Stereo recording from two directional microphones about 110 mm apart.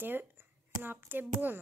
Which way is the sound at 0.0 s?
15° right (ahead or behind).